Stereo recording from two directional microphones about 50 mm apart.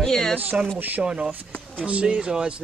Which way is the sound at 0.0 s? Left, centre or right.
Centre.